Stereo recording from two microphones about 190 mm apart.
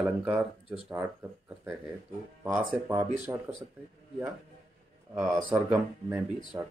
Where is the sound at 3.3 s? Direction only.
20° right (ahead or behind).